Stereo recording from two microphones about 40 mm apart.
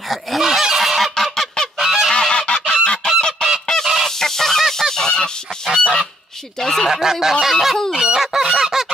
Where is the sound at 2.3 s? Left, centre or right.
Left.